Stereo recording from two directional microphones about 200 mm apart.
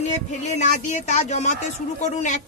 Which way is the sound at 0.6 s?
35° left (ahead or behind).